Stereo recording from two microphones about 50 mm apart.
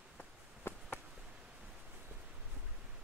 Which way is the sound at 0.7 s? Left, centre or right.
Left.